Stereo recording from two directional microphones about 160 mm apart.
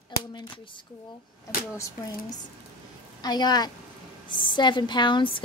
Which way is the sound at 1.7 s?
20° left (ahead or behind).